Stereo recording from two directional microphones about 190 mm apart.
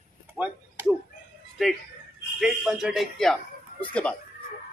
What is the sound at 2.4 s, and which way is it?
A man's voice, centre (ahead or behind).